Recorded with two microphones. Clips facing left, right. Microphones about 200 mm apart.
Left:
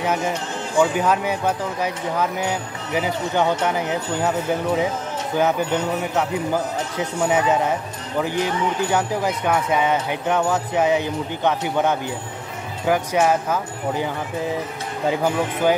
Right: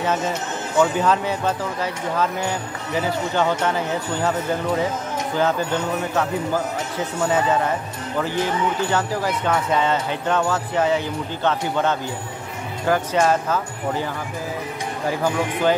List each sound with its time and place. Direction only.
0.0 s speech: 10° left (ahead or behind)